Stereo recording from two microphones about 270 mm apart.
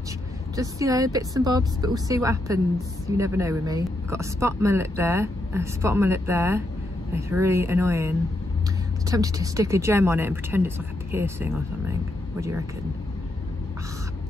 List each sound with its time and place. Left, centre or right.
0.6 s speech: centre
9.1 s speech: centre